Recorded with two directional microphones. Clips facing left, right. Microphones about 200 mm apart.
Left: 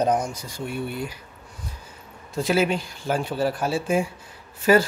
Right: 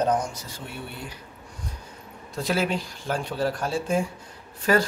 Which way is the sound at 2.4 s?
Centre (ahead or behind).